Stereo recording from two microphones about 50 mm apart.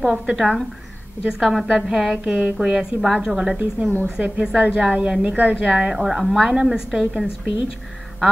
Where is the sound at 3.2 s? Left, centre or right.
Centre.